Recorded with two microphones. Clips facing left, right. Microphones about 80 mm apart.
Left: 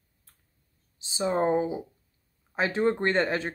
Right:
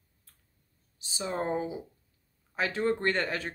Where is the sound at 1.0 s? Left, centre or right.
Left.